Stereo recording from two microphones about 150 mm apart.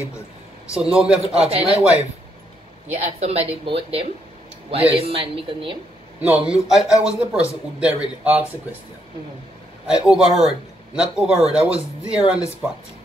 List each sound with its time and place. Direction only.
0.7 s speech: 5° right (ahead or behind)
1.3 s speech: 45° right (ahead or behind)
3.0 s speech: 45° right (ahead or behind)
6.2 s speech: 10° right (ahead or behind)
9.8 s speech: 5° right (ahead or behind)